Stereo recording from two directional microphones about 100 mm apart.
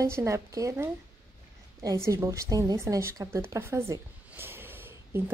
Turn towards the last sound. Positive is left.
turn(degrees=-20)  # may be behind; listen again after turning